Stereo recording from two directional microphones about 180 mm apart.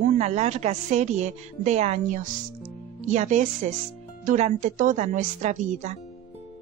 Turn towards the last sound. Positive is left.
turn(degrees=-40)  # may be behind; listen again after turning